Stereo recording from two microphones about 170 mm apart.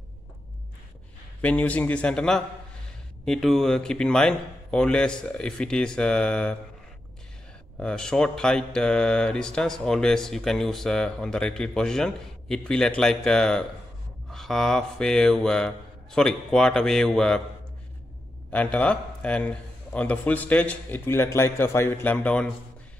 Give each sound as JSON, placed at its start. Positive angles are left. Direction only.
{"t": 1.4, "sound": "a man's voice", "side_deg": 10}
{"t": 7.8, "sound": "speech", "side_deg": 5}
{"t": 18.5, "sound": "a man's voice", "side_deg": 10}